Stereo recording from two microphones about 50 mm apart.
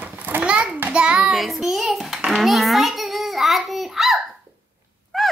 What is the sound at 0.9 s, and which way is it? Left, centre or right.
Child singing, centre.